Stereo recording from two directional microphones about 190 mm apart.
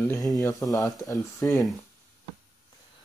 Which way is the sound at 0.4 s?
15° left (ahead or behind).